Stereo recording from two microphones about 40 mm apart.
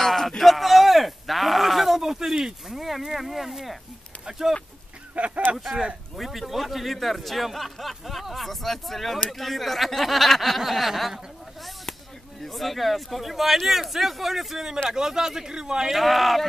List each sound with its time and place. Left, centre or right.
0.0 s a sound: centre
0.4 s speech: centre
5.1 s speech: right
6.1 s a man's voice: centre
12.4 s a man's voice: centre
15.9 s a man's voice: centre